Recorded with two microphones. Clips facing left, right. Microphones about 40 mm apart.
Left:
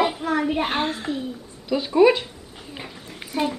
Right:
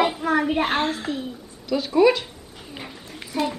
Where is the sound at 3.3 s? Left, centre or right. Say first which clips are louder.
Left 1 dB; centre.